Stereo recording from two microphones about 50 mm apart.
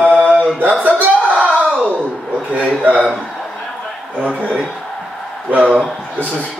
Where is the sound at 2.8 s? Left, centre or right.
Right.